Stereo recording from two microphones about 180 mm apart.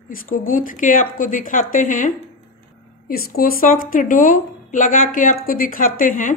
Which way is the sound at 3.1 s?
55° left (ahead or behind).